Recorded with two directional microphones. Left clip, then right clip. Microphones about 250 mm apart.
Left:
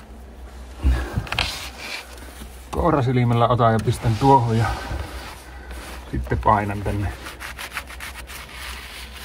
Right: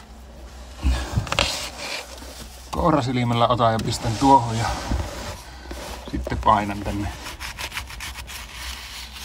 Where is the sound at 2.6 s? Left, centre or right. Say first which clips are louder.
Even; right.